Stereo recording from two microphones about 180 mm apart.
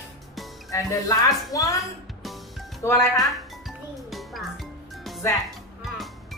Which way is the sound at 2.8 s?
20° left (ahead or behind).